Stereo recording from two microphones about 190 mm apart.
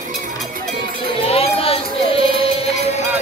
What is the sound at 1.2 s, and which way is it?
Music, 30° left (ahead or behind).